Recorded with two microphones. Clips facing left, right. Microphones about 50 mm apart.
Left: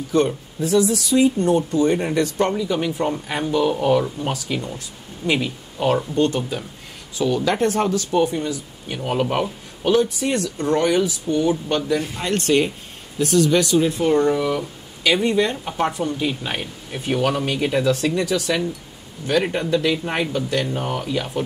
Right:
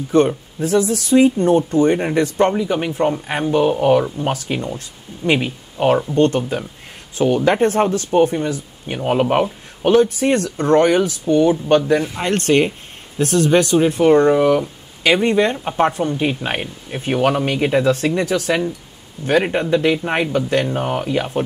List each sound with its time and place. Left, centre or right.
0.1 s speech: right
15.7 s speech: right
20.3 s speech: right
20.6 s speech: right